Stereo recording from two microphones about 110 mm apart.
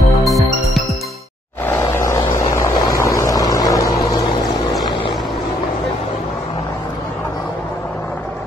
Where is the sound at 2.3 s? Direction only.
25° left (ahead or behind).